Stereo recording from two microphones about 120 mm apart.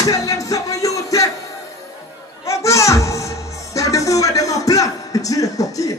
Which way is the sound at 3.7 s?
25° left (ahead or behind).